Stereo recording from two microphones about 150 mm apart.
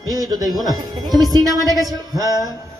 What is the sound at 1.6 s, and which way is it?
Speech, 25° right (ahead or behind).